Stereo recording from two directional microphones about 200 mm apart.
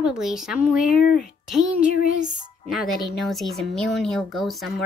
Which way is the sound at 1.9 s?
45° left (ahead or behind).